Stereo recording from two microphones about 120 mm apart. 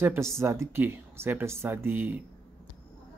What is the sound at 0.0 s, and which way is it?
Speech, 20° right (ahead or behind).